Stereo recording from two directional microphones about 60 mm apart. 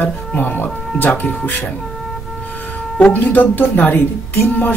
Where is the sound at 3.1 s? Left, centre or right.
Left.